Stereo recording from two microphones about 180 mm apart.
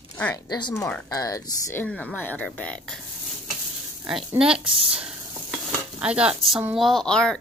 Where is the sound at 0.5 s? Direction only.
25° left (ahead or behind); by 3.0 s 5° left (ahead or behind).